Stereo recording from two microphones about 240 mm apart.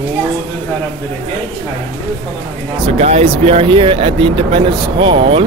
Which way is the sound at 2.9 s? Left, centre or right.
Right.